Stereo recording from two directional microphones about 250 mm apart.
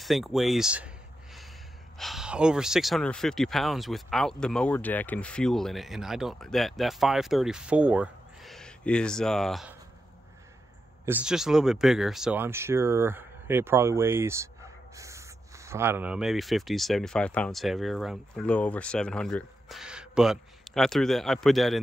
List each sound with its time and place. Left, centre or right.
0.0 s a sound: centre
2.0 s speech: centre
11.1 s speech: centre